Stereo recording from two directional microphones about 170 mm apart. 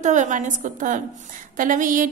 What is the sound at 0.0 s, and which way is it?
A woman's voice, 45° right (ahead or behind).